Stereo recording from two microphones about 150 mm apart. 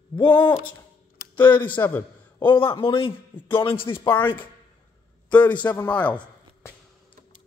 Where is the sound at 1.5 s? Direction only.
10° left (ahead or behind).